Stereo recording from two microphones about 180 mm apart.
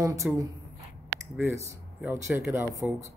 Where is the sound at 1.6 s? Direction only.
15° right (ahead or behind).